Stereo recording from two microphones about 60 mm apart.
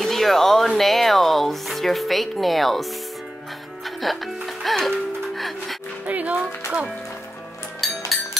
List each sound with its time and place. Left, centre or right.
0.0 s speech: centre
6.0 s music: right
7.8 s music: centre